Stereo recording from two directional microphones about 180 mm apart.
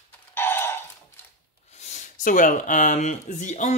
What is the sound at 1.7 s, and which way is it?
Speech, 40° left (ahead or behind).